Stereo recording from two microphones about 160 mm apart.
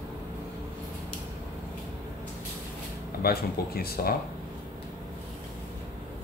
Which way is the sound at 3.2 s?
70° left (ahead or behind).